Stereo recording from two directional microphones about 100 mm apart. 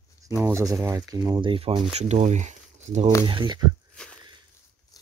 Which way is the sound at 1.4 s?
65° right (ahead or behind).